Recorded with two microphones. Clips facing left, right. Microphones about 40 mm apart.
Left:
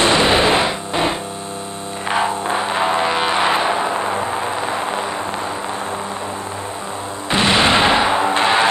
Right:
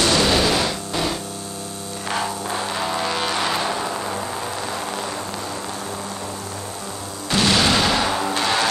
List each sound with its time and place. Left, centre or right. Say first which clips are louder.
0.0 s a sound: left 4 dB; left
2.0 s music: left 6 dB; left
7.2 s music: left 3 dB; left